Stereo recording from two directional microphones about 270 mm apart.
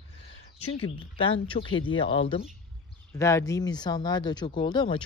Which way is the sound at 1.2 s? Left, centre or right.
Centre.